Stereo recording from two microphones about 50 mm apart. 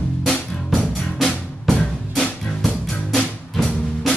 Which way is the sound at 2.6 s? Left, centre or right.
Centre.